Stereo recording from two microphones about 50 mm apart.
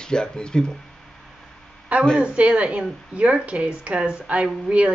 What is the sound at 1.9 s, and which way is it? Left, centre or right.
A woman's voice, right.